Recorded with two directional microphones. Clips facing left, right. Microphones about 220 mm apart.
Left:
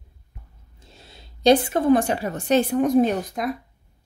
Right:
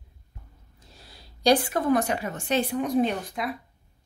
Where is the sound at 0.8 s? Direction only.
25° left (ahead or behind); by 3.5 s 45° left (ahead or behind).